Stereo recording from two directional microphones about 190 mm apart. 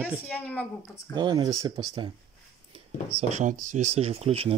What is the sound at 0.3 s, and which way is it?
Speech, 5° left (ahead or behind).